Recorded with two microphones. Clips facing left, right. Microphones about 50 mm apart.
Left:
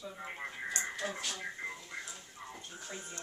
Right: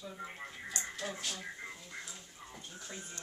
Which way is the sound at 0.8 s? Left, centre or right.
Centre.